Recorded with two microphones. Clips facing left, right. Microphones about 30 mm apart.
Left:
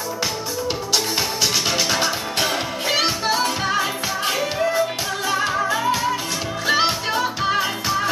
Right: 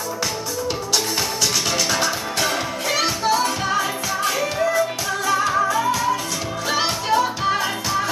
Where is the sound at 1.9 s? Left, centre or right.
Centre.